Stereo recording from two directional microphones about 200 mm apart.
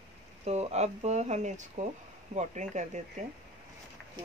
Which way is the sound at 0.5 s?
35° right (ahead or behind).